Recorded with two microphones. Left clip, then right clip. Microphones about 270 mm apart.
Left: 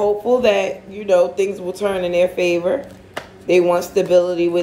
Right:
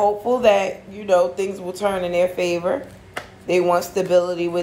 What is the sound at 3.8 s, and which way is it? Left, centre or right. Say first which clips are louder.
Speech: left 4 dB; right.